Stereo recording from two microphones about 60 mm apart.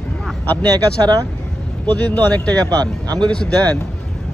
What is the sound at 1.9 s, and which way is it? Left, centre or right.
Speech, left.